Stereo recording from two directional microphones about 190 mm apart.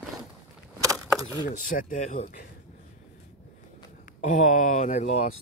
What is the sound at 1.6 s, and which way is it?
Speech, 45° left (ahead or behind).